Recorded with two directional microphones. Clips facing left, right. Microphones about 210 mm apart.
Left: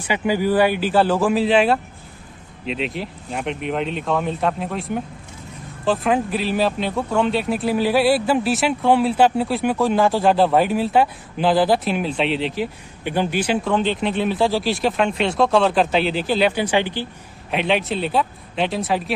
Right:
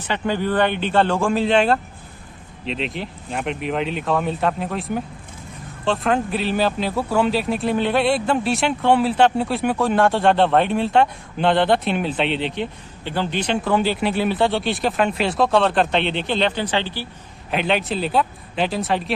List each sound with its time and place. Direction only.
0.0 s speech: 10° left (ahead or behind)
13.0 s speech: 15° left (ahead or behind)
13.7 s speech: 5° right (ahead or behind); by 17.1 s 15° left (ahead or behind)
17.5 s speech: centre (ahead or behind)